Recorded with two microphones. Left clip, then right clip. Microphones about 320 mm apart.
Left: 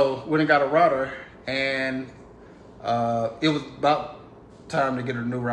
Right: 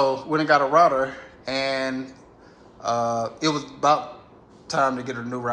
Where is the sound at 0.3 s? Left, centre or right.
Centre.